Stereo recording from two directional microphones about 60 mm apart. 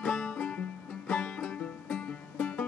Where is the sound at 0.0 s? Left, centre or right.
Centre.